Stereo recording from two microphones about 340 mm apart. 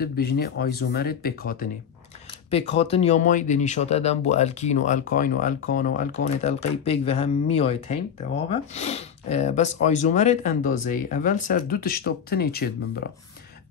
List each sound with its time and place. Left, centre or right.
0.0 s speech: left